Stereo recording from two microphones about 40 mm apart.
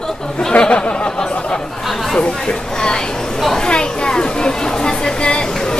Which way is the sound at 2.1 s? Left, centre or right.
Left.